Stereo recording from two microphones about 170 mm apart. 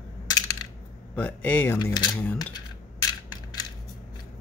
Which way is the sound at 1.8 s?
25° left (ahead or behind).